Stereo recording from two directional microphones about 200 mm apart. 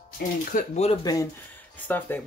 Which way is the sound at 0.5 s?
40° left (ahead or behind).